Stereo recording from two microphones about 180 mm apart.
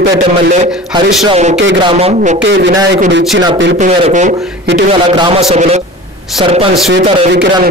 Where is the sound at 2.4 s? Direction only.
75° right (ahead or behind).